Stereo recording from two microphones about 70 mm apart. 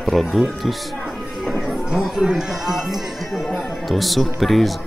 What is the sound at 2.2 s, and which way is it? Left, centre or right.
Speech, centre.